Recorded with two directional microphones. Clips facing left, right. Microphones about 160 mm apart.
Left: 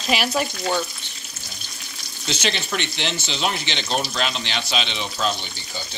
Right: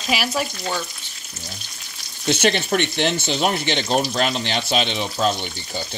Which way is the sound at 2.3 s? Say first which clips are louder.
Right 7 dB; 55° right (ahead or behind).